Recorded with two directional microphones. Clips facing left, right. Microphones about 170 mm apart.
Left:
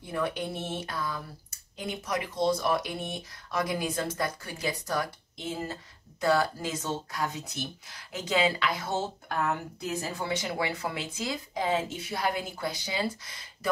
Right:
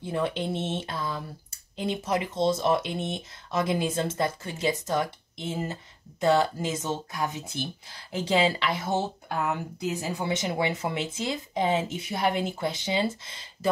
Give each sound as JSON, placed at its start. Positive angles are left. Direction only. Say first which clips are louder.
{"t": 0.0, "sound": "speech", "louder": "right 3 dB", "side_deg": -25}